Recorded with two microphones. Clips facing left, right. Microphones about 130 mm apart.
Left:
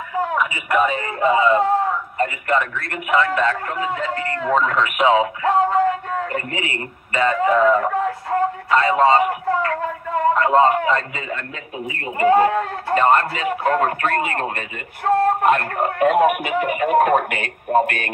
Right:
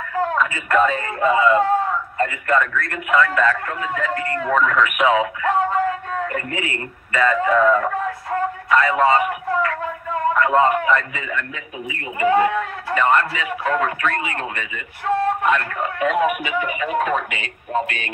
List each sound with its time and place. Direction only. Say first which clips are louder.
0.1 s a man's voice: right 1 dB; 15° left (ahead or behind); by 18.1 s 50° left (ahead or behind)